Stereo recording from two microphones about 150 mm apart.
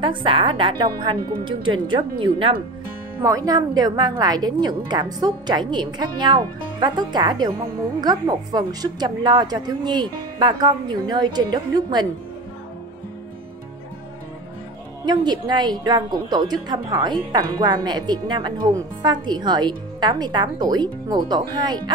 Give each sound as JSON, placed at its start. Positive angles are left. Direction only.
{"t": 0.0, "sound": "a woman's voice", "side_deg": -35}
{"t": 3.2, "sound": "a woman's voice", "side_deg": -20}
{"t": 15.0, "sound": "a woman's voice", "side_deg": -30}